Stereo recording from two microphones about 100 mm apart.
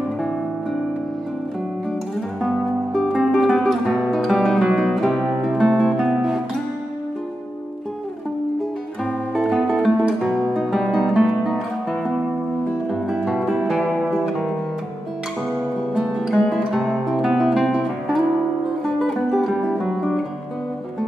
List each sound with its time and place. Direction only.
2.4 s music: 5° left (ahead or behind)
9.4 s guitar: centre (ahead or behind)
12.9 s music: centre (ahead or behind)
15.9 s music: 5° right (ahead or behind)